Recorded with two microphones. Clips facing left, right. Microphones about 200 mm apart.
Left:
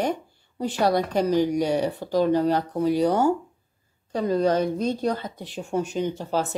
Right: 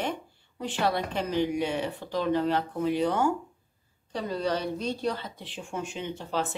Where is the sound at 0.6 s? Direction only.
40° left (ahead or behind).